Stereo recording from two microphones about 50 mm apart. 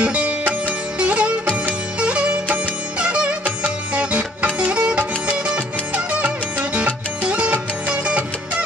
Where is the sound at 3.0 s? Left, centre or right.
Right.